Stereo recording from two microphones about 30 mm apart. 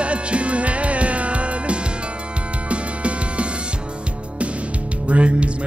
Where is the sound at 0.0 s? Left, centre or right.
Right.